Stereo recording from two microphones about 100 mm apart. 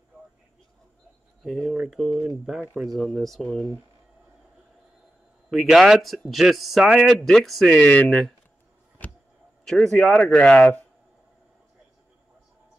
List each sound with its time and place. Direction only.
1.4 s speech: 5° left (ahead or behind)
5.5 s speech: centre (ahead or behind)
7.7 s speech: 15° left (ahead or behind)
9.7 s speech: 5° left (ahead or behind)